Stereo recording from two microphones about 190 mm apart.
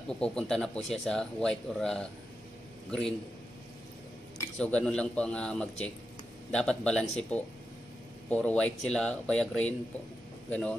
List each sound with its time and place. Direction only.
0.1 s speech: 5° left (ahead or behind)
4.6 s speech: 5° left (ahead or behind)